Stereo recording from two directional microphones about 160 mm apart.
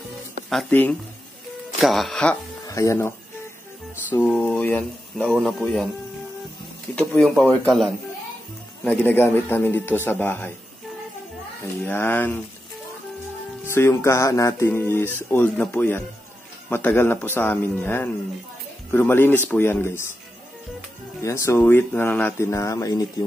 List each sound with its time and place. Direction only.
0.7 s speech: 10° left (ahead or behind)
1.8 s speech: centre (ahead or behind)
2.6 s speech: 20° left (ahead or behind)
4.3 s speech: 10° left (ahead or behind)
7.0 s speech: 5° left (ahead or behind)
11.8 s speech: 10° left (ahead or behind)
13.7 s speech: 15° left (ahead or behind)
21.2 s speech: 20° left (ahead or behind)